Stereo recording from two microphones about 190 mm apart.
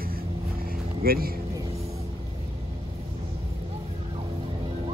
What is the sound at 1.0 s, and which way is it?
Speech, 50° right (ahead or behind).